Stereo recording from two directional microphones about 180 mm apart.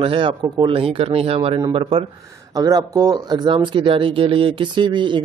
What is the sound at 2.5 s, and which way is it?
A man's voice, 20° right (ahead or behind).